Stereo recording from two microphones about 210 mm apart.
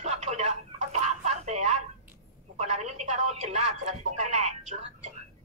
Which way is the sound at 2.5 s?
35° right (ahead or behind).